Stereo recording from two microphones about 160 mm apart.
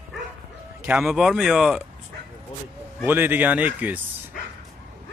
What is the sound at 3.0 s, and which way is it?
Speech, 10° right (ahead or behind).